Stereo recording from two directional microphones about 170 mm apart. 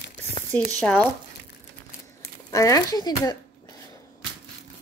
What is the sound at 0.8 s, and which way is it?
Speech, 5° left (ahead or behind).